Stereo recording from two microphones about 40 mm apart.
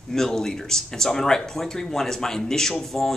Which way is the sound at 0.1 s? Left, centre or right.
Centre.